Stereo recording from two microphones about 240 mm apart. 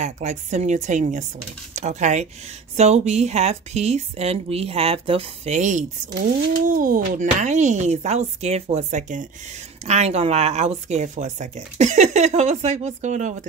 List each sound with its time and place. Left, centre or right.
0.0 s speech: right